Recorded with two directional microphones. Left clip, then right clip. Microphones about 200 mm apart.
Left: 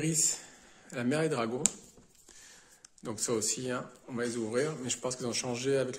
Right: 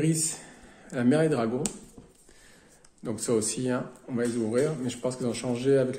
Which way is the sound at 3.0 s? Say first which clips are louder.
Right 6 dB; 25° left (ahead or behind).